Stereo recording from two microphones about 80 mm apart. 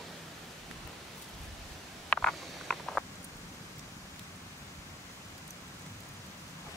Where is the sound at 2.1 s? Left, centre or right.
Centre.